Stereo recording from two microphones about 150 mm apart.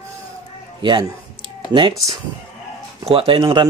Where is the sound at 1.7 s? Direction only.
30° right (ahead or behind).